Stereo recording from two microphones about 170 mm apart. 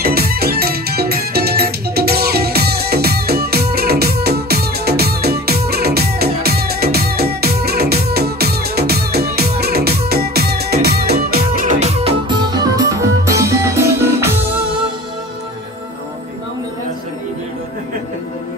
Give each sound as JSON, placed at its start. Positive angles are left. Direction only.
{"t": 0.0, "sound": "music", "side_deg": -65}
{"t": 11.8, "sound": "music", "side_deg": -35}